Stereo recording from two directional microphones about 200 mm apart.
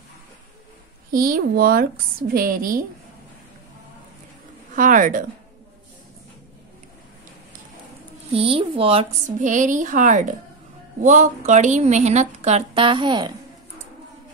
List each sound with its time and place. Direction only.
1.1 s a woman's voice: 45° right (ahead or behind)
4.7 s a woman's voice: 40° right (ahead or behind)
8.3 s a woman's voice: 25° right (ahead or behind)